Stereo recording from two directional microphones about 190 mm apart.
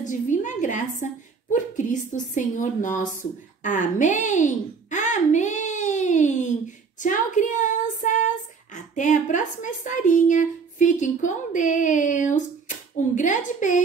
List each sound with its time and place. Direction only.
0.0 s a woman's voice: 40° left (ahead or behind)
7.0 s child singing: 40° left (ahead or behind)
8.9 s speech: 40° left (ahead or behind)